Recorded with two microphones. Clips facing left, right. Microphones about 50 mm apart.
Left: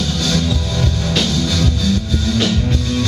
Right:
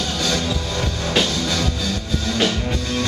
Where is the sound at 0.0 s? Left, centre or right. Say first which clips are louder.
Left 3 dB; centre.